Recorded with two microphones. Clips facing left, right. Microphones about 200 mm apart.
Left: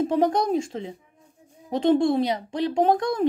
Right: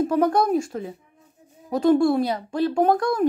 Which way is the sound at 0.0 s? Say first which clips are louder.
Right 1 dB; 25° left (ahead or behind).